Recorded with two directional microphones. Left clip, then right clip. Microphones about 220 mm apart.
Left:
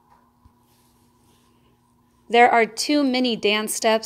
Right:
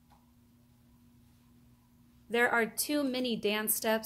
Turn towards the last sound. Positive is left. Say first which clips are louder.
# left 11 dB
turn(degrees=15)  # may be behind; listen again after turning